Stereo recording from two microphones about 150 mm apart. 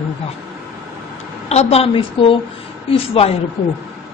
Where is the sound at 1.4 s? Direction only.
45° left (ahead or behind).